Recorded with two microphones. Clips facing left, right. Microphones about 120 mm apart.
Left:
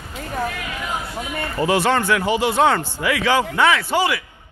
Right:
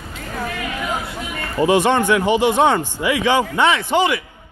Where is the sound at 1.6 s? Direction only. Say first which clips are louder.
Right 3 dB; 20° right (ahead or behind).